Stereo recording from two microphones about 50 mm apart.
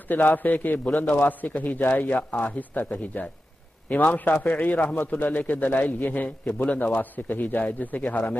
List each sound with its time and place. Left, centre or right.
0.1 s a man's voice: left